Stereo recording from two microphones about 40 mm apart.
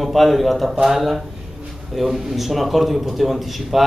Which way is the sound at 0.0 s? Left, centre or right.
Centre.